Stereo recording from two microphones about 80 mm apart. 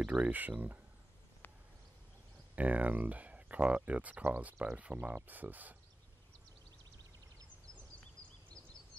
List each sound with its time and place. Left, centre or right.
0.0 s speech: centre
2.5 s speech: centre